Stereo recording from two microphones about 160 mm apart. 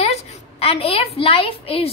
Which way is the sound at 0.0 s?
40° left (ahead or behind).